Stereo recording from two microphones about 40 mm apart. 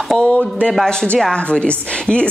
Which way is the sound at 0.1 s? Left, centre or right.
Centre.